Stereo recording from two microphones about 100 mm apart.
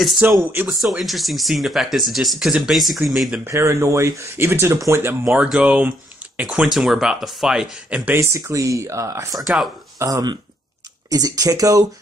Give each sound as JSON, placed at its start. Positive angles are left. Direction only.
{"t": 0.0, "sound": "speech", "side_deg": 0}
{"t": 0.4, "sound": "speech", "side_deg": -20}
{"t": 0.7, "sound": "speech", "side_deg": 0}
{"t": 3.4, "sound": "speech", "side_deg": -30}
{"t": 5.2, "sound": "speech", "side_deg": -10}
{"t": 8.0, "sound": "speech", "side_deg": -25}